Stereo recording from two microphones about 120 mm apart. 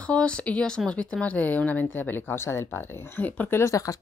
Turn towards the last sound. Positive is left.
turn(degrees=25)  # may be behind; listen again after turning